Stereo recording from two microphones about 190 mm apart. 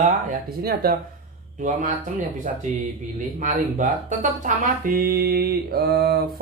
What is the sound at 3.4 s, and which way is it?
Speech, 45° right (ahead or behind).